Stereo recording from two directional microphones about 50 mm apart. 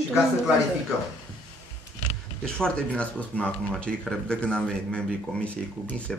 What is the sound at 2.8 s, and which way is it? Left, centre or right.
Speech, left.